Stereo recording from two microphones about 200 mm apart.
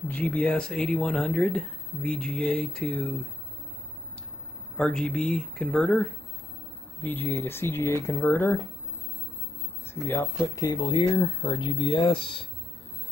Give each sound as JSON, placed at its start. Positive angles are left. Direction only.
{"t": 0.1, "sound": "speech", "side_deg": 5}
{"t": 4.7, "sound": "speech", "side_deg": 5}
{"t": 10.0, "sound": "speech", "side_deg": 10}